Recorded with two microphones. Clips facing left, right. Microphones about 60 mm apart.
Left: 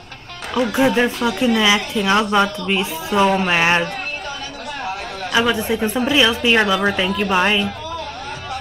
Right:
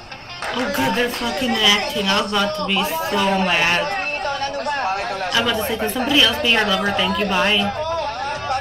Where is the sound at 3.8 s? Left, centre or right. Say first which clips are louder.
Right 4 dB; right.